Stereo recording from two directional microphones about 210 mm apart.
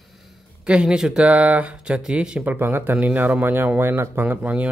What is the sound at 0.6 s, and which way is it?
Speech, 5° right (ahead or behind).